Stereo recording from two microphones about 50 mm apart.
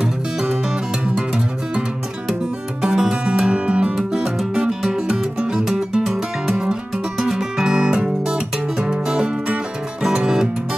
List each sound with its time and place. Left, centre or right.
0.0 s music: centre
2.8 s music: centre
5.0 s music: right